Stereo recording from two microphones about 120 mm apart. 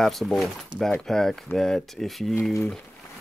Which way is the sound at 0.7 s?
40° right (ahead or behind).